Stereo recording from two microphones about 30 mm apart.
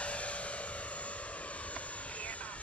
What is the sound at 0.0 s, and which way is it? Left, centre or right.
Vehicle, left.